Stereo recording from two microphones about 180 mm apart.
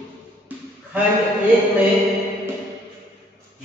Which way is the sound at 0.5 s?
10° right (ahead or behind).